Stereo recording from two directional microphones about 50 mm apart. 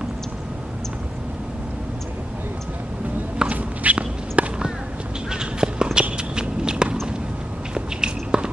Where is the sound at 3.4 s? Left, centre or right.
Right.